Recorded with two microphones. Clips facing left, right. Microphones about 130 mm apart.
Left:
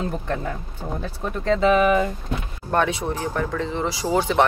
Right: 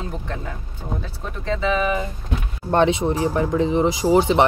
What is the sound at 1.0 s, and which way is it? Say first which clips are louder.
Speech: left 5 dB; 55° left (ahead or behind).